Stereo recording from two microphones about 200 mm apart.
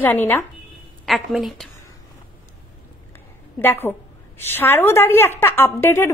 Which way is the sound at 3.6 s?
10° left (ahead or behind).